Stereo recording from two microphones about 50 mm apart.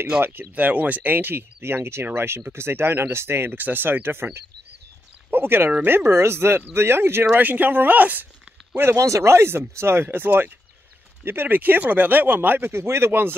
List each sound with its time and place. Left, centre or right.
0.2 s speech: right
3.5 s speech: right
7.3 s speech: right
8.9 s speech: right